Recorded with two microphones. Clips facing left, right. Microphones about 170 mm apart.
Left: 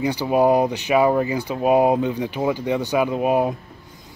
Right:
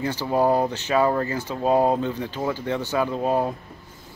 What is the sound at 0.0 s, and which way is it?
Speech, 15° left (ahead or behind).